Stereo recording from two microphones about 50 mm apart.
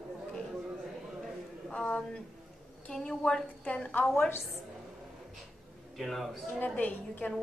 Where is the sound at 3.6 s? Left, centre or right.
Left.